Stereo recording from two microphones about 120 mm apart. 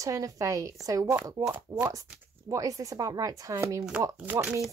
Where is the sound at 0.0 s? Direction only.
25° right (ahead or behind).